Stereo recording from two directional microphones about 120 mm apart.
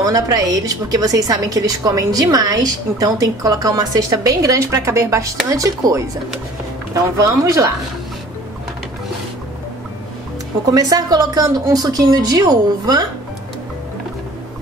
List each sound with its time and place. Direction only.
0.0 s a woman's voice: 30° right (ahead or behind)
10.7 s a woman's voice: 35° right (ahead or behind)